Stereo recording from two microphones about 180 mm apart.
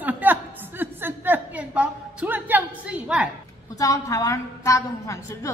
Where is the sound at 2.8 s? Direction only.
10° right (ahead or behind).